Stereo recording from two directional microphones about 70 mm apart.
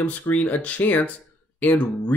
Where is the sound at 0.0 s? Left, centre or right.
Left.